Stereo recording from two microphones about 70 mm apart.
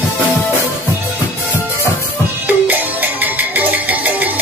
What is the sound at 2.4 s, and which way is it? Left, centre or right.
Music, right.